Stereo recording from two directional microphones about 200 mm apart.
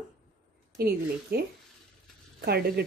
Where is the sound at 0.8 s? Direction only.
50° right (ahead or behind).